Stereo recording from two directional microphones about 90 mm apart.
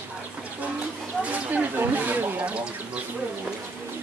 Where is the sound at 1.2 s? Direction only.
15° right (ahead or behind).